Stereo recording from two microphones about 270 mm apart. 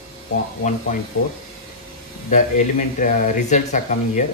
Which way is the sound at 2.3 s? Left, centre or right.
Left.